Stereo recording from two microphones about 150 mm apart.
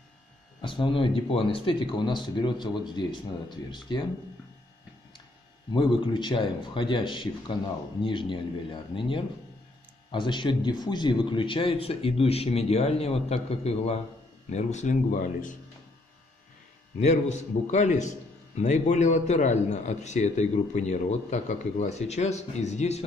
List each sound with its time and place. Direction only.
0.6 s speech: 35° left (ahead or behind)
5.7 s a man's voice: 35° left (ahead or behind); by 15.5 s 60° left (ahead or behind)
17.0 s a man's voice: 50° left (ahead or behind)